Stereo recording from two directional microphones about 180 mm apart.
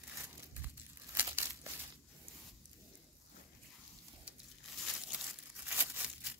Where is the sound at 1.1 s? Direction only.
15° right (ahead or behind).